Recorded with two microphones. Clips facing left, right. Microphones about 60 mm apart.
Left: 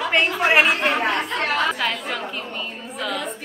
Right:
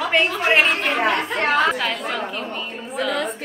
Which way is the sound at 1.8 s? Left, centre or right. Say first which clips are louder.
Right 1 dB; centre.